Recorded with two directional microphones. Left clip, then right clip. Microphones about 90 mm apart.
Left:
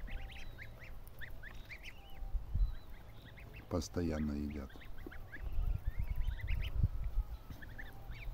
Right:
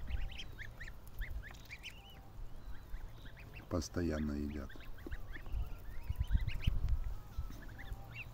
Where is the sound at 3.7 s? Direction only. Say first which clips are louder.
Even; 10° left (ahead or behind).